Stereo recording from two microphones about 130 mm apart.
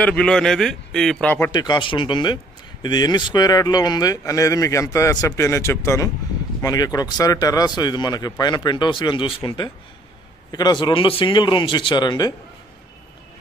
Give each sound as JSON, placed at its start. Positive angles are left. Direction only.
{"t": 0.0, "sound": "a man's voice", "side_deg": 5}
{"t": 1.5, "sound": "a man's voice", "side_deg": 35}